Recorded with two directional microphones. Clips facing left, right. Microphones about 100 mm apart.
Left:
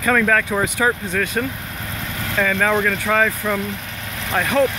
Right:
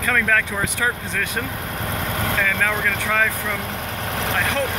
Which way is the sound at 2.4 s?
15° left (ahead or behind).